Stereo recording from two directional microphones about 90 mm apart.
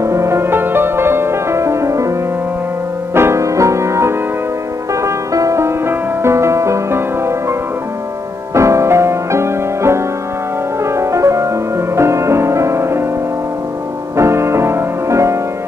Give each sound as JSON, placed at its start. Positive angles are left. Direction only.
{"t": 0.0, "sound": "music", "side_deg": -30}
{"t": 3.2, "sound": "music", "side_deg": -30}
{"t": 8.5, "sound": "music", "side_deg": -35}
{"t": 14.1, "sound": "music", "side_deg": -30}